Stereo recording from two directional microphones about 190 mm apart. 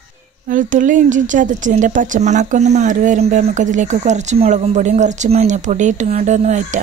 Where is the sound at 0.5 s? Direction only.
45° right (ahead or behind).